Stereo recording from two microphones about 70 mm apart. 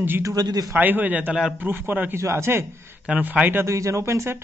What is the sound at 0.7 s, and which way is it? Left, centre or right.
A man's voice, right.